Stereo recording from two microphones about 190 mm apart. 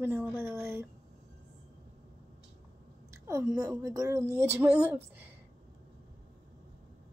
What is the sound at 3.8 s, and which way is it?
A woman's voice, 15° right (ahead or behind).